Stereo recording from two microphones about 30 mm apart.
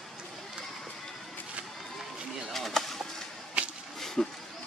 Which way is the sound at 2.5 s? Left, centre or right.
Centre.